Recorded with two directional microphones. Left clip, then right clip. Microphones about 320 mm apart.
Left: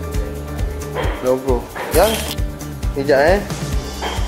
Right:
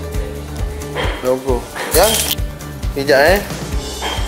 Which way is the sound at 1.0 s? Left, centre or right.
Centre.